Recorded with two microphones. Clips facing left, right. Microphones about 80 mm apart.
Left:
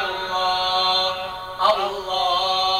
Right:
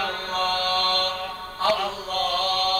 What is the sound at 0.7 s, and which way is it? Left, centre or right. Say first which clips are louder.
Mantra: left 3 dB; left.